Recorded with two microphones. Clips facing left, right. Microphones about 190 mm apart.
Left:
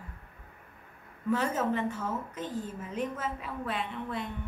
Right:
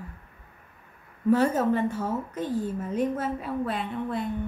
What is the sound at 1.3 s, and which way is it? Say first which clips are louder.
A woman's voice: right 6 dB; 40° right (ahead or behind).